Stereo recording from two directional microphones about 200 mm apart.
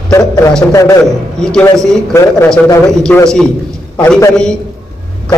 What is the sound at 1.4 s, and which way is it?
Speech, 5° left (ahead or behind).